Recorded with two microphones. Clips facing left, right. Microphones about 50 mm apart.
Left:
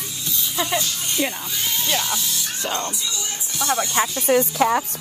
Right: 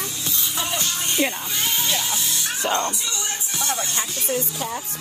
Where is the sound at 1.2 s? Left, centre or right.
Right.